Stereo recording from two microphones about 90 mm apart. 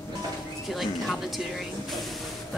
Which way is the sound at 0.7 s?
Centre (ahead or behind).